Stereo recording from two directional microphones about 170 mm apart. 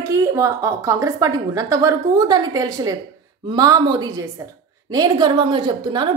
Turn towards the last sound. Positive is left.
turn(degrees=-25)  # may be behind; listen again after turning